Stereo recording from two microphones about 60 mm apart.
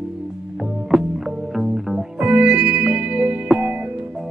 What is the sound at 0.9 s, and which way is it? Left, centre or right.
Music, centre.